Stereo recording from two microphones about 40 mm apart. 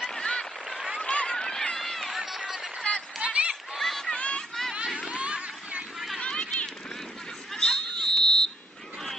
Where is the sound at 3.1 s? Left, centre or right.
Right.